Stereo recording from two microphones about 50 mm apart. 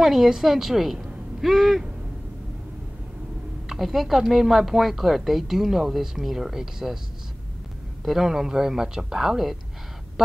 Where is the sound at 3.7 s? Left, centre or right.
Centre.